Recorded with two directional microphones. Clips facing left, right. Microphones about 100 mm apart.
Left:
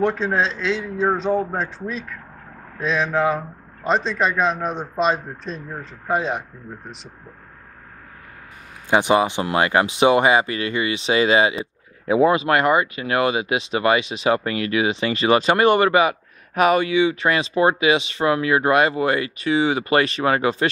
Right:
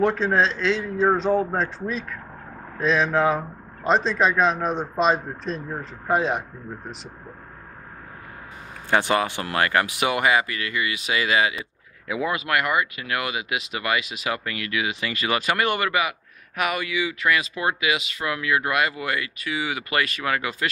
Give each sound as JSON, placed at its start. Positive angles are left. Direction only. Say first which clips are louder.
{"t": 0.0, "sound": "a man's voice", "louder": "even", "side_deg": 0}
{"t": 8.9, "sound": "speech", "louder": "left 4 dB", "side_deg": 20}